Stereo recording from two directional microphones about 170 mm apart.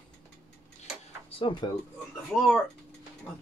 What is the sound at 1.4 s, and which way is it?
Speech, 30° left (ahead or behind).